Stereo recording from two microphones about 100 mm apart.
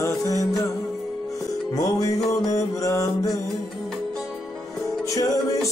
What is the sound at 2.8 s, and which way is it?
Music, 35° left (ahead or behind).